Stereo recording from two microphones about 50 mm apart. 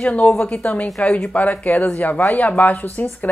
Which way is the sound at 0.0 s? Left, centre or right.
Left.